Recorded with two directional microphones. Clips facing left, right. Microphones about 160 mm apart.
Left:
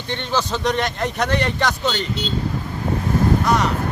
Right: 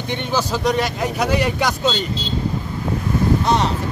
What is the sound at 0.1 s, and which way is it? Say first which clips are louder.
Speech: right 1 dB; 10° right (ahead or behind).